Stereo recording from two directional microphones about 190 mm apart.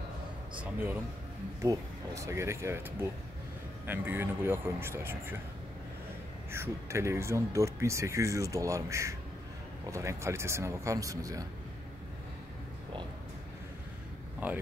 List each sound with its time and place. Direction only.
0.6 s a man's voice: 10° right (ahead or behind)
6.5 s speech: 15° right (ahead or behind)
14.4 s speech: 10° right (ahead or behind)